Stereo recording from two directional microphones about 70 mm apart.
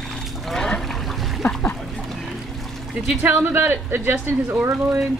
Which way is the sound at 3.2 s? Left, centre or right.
Right.